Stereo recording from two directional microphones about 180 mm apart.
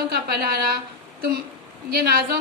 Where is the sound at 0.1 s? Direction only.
55° right (ahead or behind).